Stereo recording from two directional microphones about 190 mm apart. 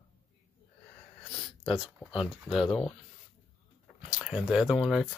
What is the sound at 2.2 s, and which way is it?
Speech, 5° right (ahead or behind).